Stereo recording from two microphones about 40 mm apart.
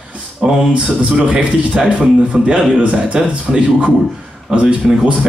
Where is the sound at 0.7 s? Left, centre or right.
Right.